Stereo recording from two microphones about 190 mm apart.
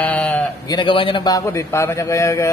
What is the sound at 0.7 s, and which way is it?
A man's voice, 25° left (ahead or behind).